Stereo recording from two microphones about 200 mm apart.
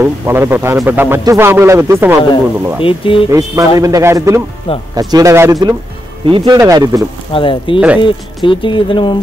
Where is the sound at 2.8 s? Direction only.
25° left (ahead or behind).